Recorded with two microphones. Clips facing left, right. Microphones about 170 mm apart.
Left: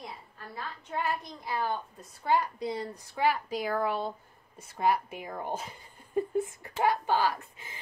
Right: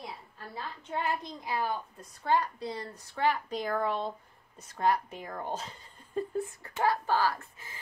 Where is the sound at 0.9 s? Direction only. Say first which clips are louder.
Even; 20° right (ahead or behind).